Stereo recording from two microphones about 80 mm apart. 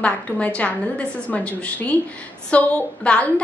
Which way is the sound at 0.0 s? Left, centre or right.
Centre.